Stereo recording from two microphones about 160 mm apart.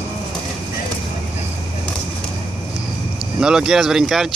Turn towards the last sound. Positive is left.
turn(degrees=-5)  # may be behind; listen again after turning